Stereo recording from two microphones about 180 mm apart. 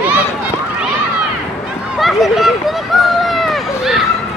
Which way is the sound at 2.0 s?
Centre (ahead or behind).